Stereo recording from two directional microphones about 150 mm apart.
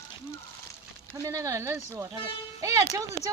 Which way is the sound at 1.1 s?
20° right (ahead or behind).